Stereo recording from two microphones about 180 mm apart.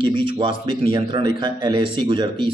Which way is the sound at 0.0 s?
25° right (ahead or behind).